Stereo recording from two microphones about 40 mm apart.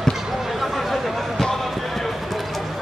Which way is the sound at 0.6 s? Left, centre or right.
Centre.